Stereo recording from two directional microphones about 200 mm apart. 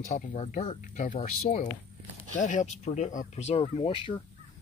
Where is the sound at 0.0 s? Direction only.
40° left (ahead or behind).